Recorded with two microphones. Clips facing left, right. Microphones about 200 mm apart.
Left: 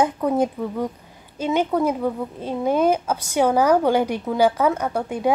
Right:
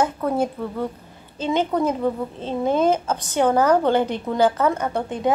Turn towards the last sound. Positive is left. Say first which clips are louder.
# even
turn(degrees=10)  # may be behind; listen again after turning